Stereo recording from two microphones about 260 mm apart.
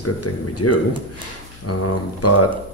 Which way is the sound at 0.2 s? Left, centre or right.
Left.